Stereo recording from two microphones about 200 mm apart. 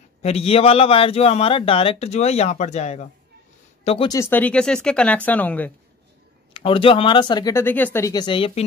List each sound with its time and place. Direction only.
0.2 s a man's voice: 30° left (ahead or behind)
4.1 s speech: 10° left (ahead or behind)
6.5 s speech: 25° left (ahead or behind)